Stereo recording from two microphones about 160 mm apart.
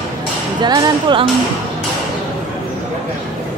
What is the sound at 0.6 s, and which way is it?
Music, 25° right (ahead or behind).